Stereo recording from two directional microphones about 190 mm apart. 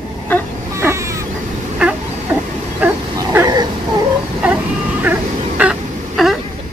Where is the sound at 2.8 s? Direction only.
15° right (ahead or behind).